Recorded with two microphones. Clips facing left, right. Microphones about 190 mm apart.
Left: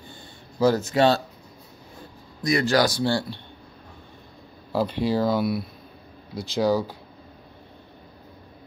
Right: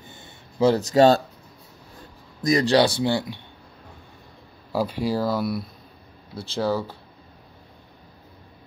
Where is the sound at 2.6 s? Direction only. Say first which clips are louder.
Right 2 dB; 30° right (ahead or behind).